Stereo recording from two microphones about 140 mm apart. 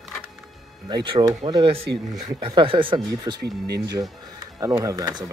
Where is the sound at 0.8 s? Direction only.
30° right (ahead or behind).